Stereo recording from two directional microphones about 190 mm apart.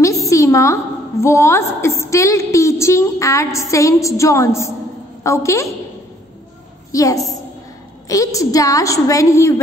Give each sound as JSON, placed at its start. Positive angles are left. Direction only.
{"t": 0.0, "sound": "a sound", "side_deg": 15}
{"t": 1.2, "sound": "a woman's voice", "side_deg": 15}
{"t": 6.9, "sound": "a woman's voice", "side_deg": 15}